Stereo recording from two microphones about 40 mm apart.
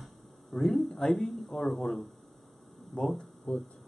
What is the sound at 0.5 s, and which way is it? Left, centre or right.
Speech, centre.